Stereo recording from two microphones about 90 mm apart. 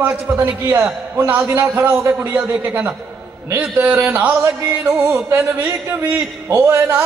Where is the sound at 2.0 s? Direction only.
15° right (ahead or behind).